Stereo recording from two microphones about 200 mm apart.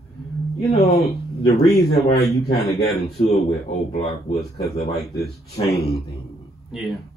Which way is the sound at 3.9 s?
30° left (ahead or behind).